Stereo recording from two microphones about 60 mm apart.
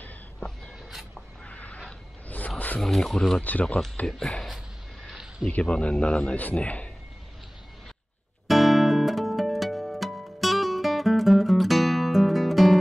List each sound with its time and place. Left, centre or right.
1.4 s a sound: left
2.8 s speech: centre
3.3 s a man's voice: left
4.2 s speech: centre
5.5 s a man's voice: centre
8.5 s music: centre